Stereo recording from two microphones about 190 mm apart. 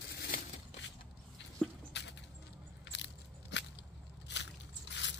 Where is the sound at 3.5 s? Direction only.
65° left (ahead or behind).